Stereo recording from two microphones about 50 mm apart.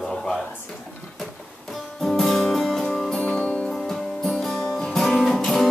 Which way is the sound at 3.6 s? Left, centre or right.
Centre.